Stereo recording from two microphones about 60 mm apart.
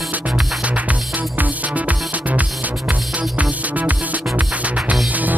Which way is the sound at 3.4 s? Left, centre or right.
Right.